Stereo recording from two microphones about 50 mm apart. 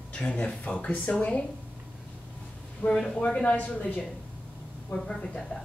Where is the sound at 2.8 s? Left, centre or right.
Left.